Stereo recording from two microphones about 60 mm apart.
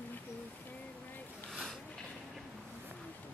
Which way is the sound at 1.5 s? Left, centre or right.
Centre.